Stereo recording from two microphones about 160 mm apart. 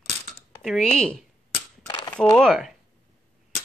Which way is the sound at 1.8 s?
30° left (ahead or behind).